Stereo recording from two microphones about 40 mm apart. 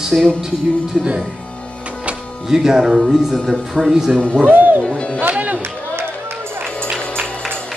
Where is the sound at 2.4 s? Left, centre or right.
Centre.